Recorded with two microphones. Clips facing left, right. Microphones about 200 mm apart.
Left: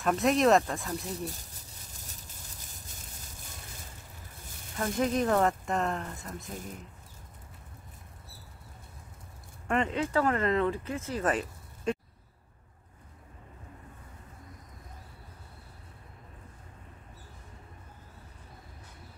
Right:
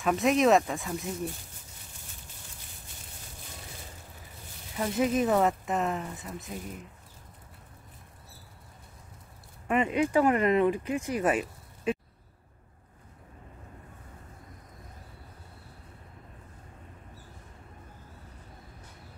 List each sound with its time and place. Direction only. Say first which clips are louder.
0.0 s speech: right 1 dB; centre (ahead or behind)
1.3 s a sound: right 1 dB; 40° left (ahead or behind)
4.7 s speech: right 2 dB; 5° right (ahead or behind)
9.7 s speech: right 3 dB; 10° right (ahead or behind)